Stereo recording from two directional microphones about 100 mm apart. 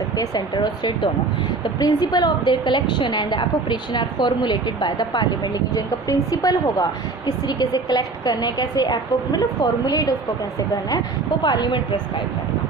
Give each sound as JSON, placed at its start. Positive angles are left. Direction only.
{"t": 0.2, "sound": "a woman's voice", "side_deg": 45}
{"t": 5.8, "sound": "a woman's voice", "side_deg": 40}
{"t": 11.4, "sound": "a woman's voice", "side_deg": 45}